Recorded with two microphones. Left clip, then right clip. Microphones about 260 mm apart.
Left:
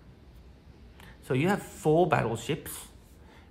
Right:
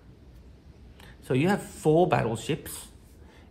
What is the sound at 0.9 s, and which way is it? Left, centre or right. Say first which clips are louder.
Speech: right 3 dB; centre.